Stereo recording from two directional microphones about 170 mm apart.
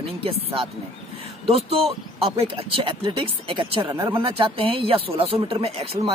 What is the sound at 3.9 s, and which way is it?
Speech, 15° right (ahead or behind).